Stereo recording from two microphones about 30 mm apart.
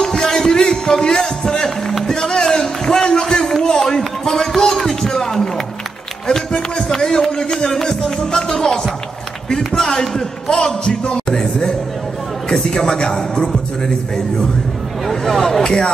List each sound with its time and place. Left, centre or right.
0.0 s music: left
1.0 s speech: centre
1.5 s music: left
2.4 s a sound: centre
4.6 s run: centre
6.2 s a sound: centre
7.5 s music: centre
8.5 s a man's voice: left
13.4 s a man's voice: centre
15.0 s a man's voice: centre
15.6 s a man's voice: left